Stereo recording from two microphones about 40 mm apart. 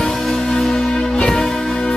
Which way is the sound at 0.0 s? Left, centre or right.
Centre.